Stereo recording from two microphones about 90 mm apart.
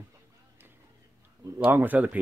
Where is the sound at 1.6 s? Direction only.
20° right (ahead or behind).